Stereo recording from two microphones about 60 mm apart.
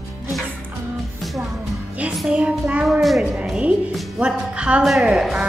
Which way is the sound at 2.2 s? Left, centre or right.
Centre.